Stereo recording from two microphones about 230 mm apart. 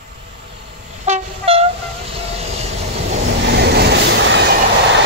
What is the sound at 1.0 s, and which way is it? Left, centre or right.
Train, right.